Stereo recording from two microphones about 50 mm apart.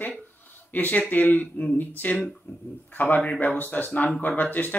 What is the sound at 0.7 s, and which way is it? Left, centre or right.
Speech, left.